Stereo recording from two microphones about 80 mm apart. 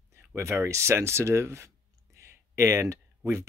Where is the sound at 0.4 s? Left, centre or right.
Right.